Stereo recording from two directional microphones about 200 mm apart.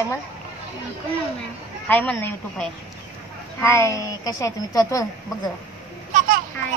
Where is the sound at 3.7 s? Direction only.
15° left (ahead or behind).